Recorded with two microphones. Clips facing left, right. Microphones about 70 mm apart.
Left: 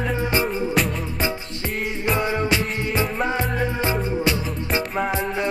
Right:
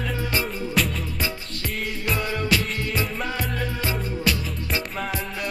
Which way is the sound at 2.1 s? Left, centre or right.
Left.